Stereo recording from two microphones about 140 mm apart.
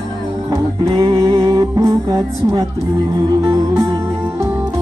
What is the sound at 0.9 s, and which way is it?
Music, 30° right (ahead or behind).